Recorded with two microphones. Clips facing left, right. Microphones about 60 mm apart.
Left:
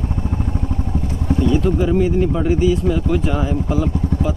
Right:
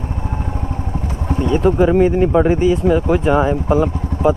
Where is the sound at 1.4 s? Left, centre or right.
Right.